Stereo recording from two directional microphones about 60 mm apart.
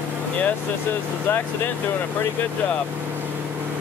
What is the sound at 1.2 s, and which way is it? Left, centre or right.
Speech, left.